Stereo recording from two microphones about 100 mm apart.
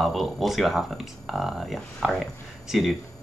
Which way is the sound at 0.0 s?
Centre (ahead or behind).